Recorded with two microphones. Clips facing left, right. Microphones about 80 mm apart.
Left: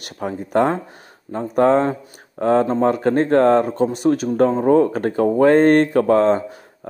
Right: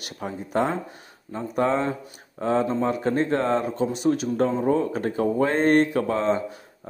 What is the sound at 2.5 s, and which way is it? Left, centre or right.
Speech, left.